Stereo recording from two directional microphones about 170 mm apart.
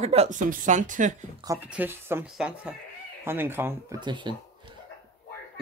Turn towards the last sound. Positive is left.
turn(degrees=-25)  # may be behind; listen again after turning